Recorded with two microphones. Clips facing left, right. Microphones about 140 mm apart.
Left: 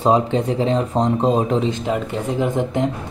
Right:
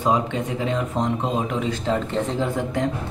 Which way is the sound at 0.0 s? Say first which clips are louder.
Left 5 dB; 30° left (ahead or behind).